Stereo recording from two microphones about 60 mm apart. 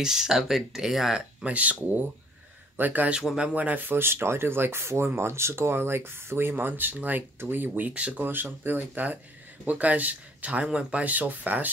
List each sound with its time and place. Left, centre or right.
0.0 s speech: centre
1.4 s speech: right
7.9 s speech: right
8.3 s speech: right